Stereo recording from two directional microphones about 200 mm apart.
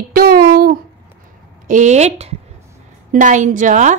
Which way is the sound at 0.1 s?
50° right (ahead or behind).